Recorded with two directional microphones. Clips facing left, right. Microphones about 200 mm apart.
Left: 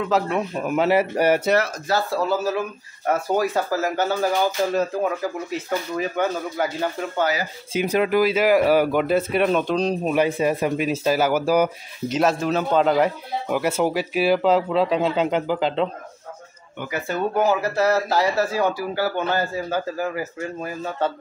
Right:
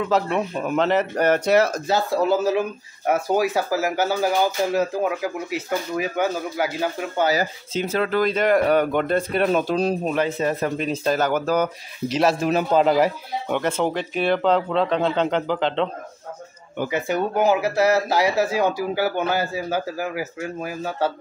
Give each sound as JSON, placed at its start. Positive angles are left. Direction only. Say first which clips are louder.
{"t": 0.0, "sound": "speech", "louder": "even", "side_deg": 0}
{"t": 1.9, "sound": "speech", "louder": "right 2 dB", "side_deg": -15}
{"t": 7.7, "sound": "speech", "louder": "left 3 dB", "side_deg": 15}
{"t": 10.1, "sound": "speech", "louder": "left 2 dB", "side_deg": 15}
{"t": 12.2, "sound": "speech", "louder": "right 1 dB", "side_deg": 0}
{"t": 13.6, "sound": "speech", "louder": "left 2 dB", "side_deg": 10}
{"t": 17.1, "sound": "speech", "louder": "even", "side_deg": -15}